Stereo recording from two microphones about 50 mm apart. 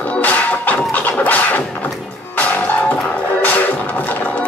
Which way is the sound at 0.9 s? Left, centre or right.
Left.